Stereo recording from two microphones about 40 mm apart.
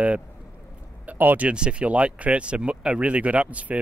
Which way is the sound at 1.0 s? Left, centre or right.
Right.